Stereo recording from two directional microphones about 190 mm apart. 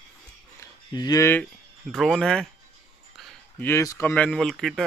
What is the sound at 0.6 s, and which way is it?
Speech, 20° left (ahead or behind).